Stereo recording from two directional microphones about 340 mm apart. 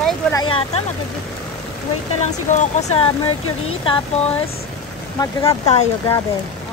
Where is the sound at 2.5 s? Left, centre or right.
Centre.